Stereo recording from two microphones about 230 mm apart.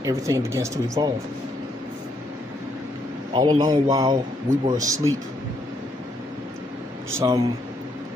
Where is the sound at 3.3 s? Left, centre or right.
Centre.